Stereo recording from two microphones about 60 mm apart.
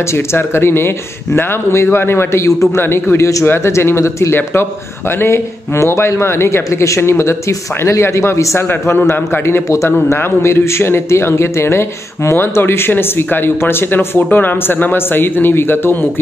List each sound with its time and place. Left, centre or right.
0.1 s speech: left
2.8 s speech: left
3.2 s speech: left
3.4 s speech: left
8.5 s speech: left